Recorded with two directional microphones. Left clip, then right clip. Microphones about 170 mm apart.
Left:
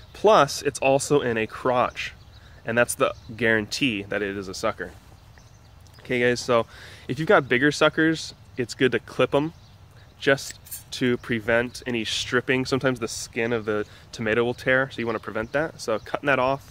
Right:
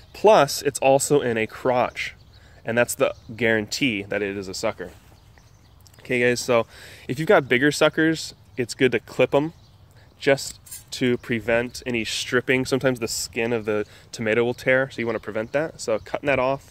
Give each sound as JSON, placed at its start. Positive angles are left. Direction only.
{"t": 0.1, "sound": "speech", "side_deg": -30}
{"t": 6.0, "sound": "speech", "side_deg": -30}